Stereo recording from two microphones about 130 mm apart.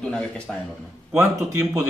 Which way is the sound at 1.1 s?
20° right (ahead or behind).